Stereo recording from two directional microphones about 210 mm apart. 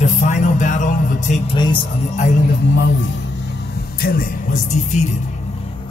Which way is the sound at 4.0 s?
45° left (ahead or behind).